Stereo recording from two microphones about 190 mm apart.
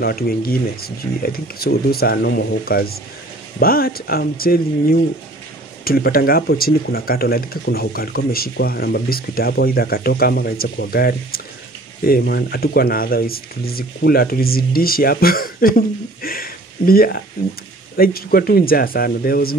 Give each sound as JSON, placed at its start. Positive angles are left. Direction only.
{"t": 0.0, "sound": "speech", "side_deg": 50}